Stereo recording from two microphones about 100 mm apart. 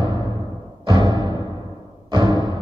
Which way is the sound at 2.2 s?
40° left (ahead or behind).